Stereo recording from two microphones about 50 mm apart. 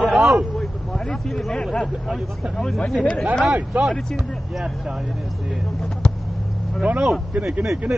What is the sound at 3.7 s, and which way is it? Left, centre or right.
Speech, right.